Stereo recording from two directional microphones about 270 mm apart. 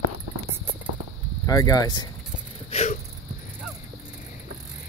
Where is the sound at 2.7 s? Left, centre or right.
Left.